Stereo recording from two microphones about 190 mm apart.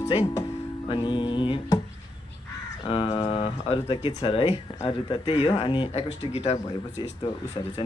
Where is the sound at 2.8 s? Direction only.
25° left (ahead or behind).